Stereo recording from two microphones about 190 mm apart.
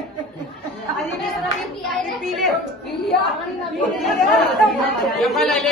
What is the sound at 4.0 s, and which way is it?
Speech, centre (ahead or behind).